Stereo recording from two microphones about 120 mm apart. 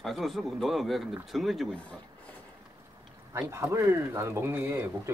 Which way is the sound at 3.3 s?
20° right (ahead or behind).